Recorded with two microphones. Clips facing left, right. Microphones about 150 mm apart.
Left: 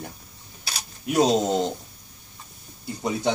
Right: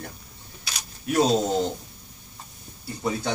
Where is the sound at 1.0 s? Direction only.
15° left (ahead or behind).